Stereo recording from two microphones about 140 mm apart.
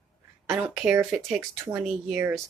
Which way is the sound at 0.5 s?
10° right (ahead or behind).